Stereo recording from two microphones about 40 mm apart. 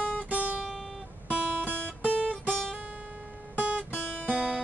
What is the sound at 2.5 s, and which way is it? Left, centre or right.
Guitar, centre.